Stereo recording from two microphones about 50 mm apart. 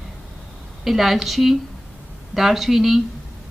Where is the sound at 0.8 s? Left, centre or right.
Centre.